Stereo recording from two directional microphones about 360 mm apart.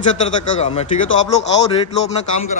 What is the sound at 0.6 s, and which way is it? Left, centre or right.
A man's voice, centre.